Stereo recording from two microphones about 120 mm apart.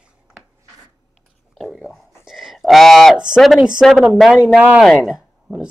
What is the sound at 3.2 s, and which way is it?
Speech, centre (ahead or behind).